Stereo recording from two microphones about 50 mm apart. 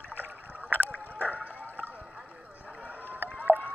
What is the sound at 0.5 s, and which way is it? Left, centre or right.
Rowboat, right.